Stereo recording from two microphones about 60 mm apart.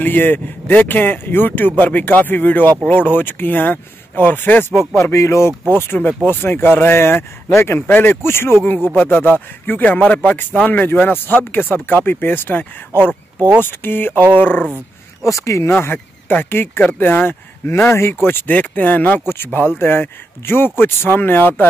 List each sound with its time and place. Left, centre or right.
0.0 s speech: left
4.9 s speech: left
5.7 s speech: left
7.8 s speech: left
15.2 s speech: left
15.8 s speech: left
18.5 s speech: left